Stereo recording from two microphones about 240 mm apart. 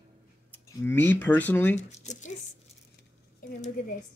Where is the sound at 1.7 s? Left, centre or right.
Left.